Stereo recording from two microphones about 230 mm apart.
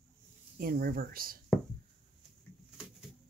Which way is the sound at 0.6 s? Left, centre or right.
Right.